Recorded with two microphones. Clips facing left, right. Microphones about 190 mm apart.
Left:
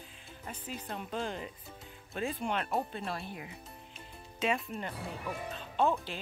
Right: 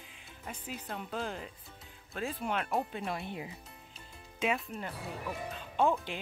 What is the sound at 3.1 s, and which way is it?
Speech, 20° right (ahead or behind).